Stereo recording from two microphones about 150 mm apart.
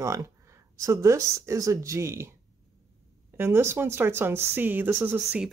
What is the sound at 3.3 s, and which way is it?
A woman's voice, 15° right (ahead or behind).